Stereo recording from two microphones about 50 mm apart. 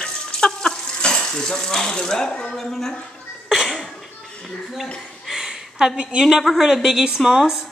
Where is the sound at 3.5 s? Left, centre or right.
Centre.